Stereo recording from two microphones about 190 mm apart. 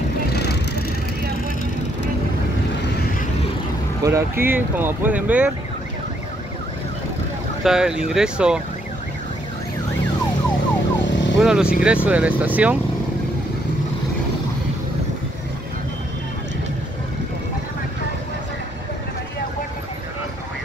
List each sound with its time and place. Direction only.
0.3 s vehicle: 60° left (ahead or behind)
4.0 s speech: 15° right (ahead or behind)
7.6 s speech: 5° right (ahead or behind)
11.3 s speech: 5° right (ahead or behind)